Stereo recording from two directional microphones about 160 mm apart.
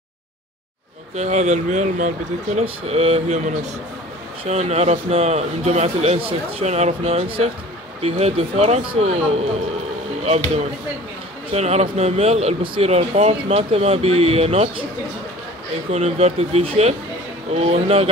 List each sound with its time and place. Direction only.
1.1 s speech: 45° right (ahead or behind)
2.6 s speech: 40° right (ahead or behind)
15.9 s speech: 45° right (ahead or behind)